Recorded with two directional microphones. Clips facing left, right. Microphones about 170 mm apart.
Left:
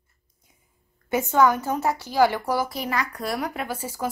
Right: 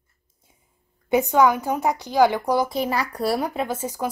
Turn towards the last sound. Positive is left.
turn(degrees=-20)  # may be behind; listen again after turning